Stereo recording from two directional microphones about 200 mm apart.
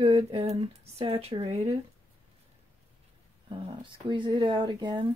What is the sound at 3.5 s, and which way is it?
Speech, 25° right (ahead or behind).